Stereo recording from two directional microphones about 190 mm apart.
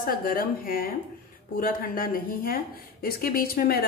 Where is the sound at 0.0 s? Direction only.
45° left (ahead or behind).